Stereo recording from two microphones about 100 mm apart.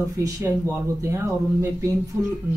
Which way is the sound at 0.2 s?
30° right (ahead or behind).